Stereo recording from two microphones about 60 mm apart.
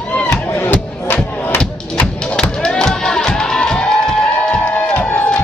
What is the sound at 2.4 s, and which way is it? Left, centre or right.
Music, centre.